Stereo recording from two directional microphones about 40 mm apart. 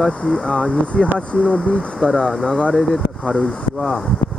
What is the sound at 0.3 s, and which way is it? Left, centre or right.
Speech, centre.